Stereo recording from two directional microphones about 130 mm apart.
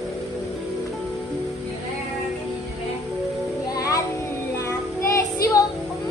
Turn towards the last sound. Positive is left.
turn(degrees=25)  # may be behind; listen again after turning